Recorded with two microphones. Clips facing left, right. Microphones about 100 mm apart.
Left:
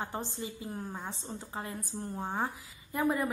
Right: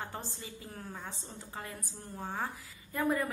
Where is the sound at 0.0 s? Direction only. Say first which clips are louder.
Left 5 dB; 20° left (ahead or behind).